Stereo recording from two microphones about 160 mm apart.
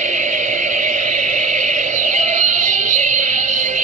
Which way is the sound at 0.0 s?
50° right (ahead or behind).